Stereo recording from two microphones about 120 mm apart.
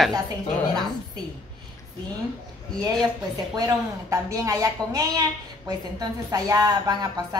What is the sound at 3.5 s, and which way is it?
A woman's voice, 30° right (ahead or behind).